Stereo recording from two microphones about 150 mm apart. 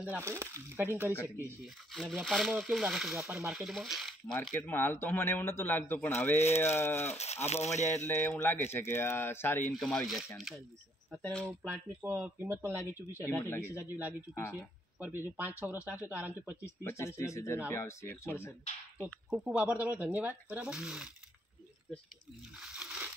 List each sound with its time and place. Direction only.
0.1 s speech: 20° right (ahead or behind)
1.6 s speech: centre (ahead or behind)
4.6 s speech: 15° left (ahead or behind)
7.2 s speech: 45° left (ahead or behind)
8.0 s speech: 15° left (ahead or behind)
9.8 s speech: centre (ahead or behind)
12.0 s speech: 15° right (ahead or behind)
13.3 s speech: 15° left (ahead or behind)
13.7 s speech: 10° right (ahead or behind)
14.3 s speech: 15° left (ahead or behind)
15.0 s speech: 10° right (ahead or behind)
16.6 s speech: 20° left (ahead or behind)
19.3 s speech: 5° right (ahead or behind)
22.6 s a sound: centre (ahead or behind)